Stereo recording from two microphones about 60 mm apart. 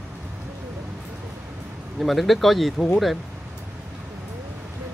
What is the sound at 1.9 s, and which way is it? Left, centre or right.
Speech, centre.